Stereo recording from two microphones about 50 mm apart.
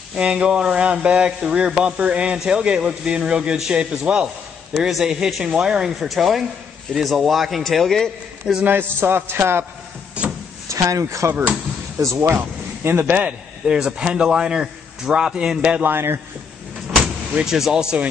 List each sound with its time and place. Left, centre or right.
0.1 s a man's voice: centre
4.7 s a man's voice: centre
5.9 s a man's voice: centre
8.6 s a man's voice: right
10.7 s speech: right
12.0 s speech: right
12.4 s a sound: right
13.7 s a man's voice: centre
15.8 s a man's voice: right
17.5 s a man's voice: centre